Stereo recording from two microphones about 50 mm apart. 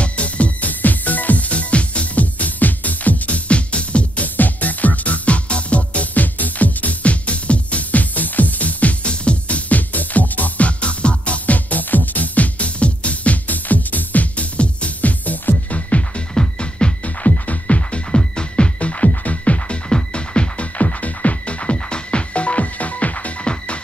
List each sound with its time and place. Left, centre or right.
0.0 s music: left
16.3 s music: centre